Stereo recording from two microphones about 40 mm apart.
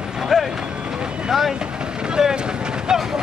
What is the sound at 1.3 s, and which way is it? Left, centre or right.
Vehicle, centre.